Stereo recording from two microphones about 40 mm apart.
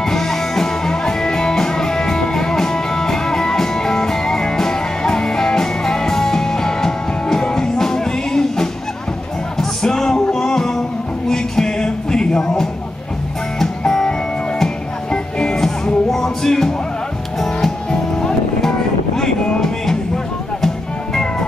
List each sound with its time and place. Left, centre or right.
0.0 s music: centre
15.3 s music: centre
19.1 s music: centre